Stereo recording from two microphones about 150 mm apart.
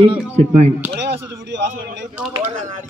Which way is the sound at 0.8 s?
20° right (ahead or behind).